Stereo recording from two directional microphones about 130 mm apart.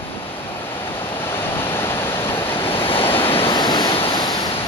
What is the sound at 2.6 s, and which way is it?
Waves, 45° left (ahead or behind).